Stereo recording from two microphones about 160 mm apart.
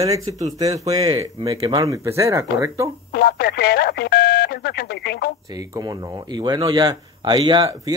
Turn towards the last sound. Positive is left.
turn(degrees=-25)  # may be behind; listen again after turning